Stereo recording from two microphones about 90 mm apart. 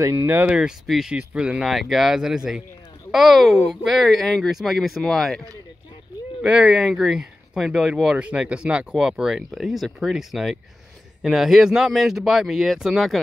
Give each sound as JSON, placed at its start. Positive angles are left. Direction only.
{"t": 0.0, "sound": "speech", "side_deg": -25}
{"t": 0.6, "sound": "speech", "side_deg": -5}
{"t": 6.4, "sound": "speech", "side_deg": -10}